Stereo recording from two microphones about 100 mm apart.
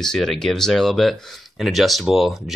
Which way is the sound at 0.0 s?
5° left (ahead or behind).